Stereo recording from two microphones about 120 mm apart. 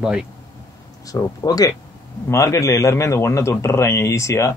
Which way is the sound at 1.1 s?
30° left (ahead or behind).